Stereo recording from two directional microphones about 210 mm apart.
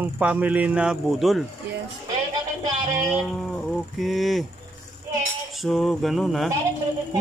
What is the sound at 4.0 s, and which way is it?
Speech, centre (ahead or behind).